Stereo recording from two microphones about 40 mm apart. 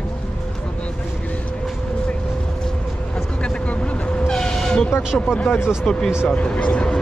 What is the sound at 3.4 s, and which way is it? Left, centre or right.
Vehicle, left.